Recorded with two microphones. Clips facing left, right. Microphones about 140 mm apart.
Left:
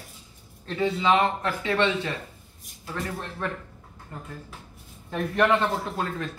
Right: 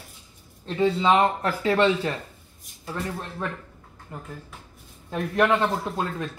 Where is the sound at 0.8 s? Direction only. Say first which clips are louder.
Right 2 dB; 30° right (ahead or behind).